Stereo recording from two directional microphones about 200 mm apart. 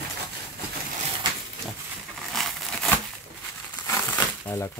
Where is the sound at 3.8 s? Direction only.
10° left (ahead or behind).